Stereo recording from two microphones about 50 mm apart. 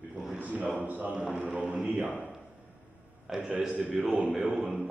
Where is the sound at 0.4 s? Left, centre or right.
Right.